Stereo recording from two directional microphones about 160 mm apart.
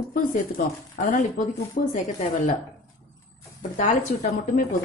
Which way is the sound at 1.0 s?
55° left (ahead or behind).